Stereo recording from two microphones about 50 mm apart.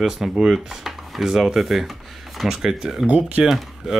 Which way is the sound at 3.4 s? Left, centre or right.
Centre.